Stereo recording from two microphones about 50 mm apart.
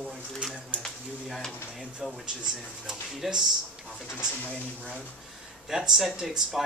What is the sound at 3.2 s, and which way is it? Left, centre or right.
Speech, centre.